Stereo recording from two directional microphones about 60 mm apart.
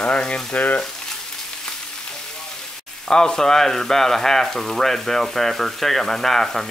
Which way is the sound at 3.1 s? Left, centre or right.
Centre.